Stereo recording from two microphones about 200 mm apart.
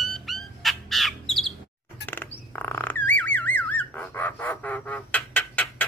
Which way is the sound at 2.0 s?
10° left (ahead or behind).